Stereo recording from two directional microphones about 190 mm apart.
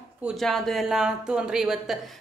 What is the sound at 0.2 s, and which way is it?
A woman's voice, centre (ahead or behind).